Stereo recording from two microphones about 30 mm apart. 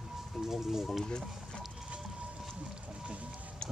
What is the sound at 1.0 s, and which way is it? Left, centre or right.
Run, left.